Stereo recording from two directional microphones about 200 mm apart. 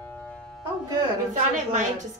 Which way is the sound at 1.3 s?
40° right (ahead or behind).